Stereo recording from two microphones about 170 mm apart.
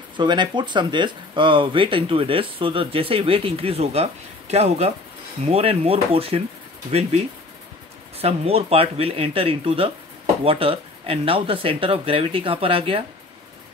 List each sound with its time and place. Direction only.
0.2 s speech: 25° right (ahead or behind)
8.2 s speech: 35° right (ahead or behind)